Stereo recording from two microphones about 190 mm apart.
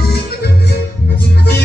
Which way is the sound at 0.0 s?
55° left (ahead or behind).